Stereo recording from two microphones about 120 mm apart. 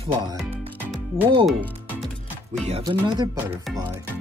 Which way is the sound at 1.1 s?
30° right (ahead or behind).